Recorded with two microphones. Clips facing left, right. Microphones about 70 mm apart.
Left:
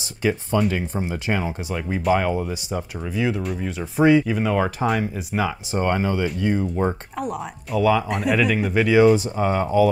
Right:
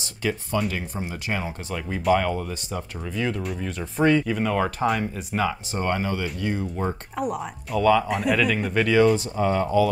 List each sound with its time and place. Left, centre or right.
0.2 s speech: left
2.1 s speech: centre
5.7 s speech: left
7.2 s speech: centre; by 9.8 s left